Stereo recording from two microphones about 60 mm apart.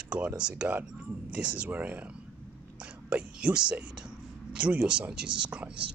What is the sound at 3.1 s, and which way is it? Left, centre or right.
Speech, centre.